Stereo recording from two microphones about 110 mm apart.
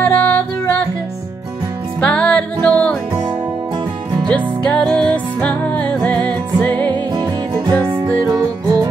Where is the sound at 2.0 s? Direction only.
10° left (ahead or behind).